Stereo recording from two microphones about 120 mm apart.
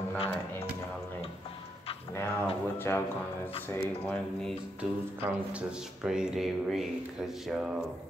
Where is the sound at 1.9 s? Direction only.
55° left (ahead or behind).